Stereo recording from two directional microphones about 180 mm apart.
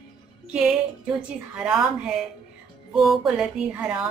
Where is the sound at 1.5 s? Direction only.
5° right (ahead or behind).